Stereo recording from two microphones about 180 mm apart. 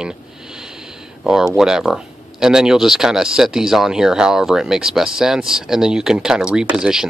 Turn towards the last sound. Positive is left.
turn(degrees=-5)  # may be behind; listen again after turning